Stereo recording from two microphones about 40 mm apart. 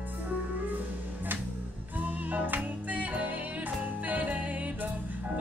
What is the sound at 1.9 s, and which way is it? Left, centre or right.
Music, right.